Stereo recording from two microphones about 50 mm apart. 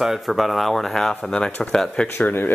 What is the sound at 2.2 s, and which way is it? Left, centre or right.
Speech, left.